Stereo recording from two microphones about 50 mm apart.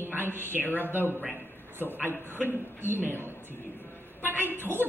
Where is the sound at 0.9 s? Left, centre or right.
Right.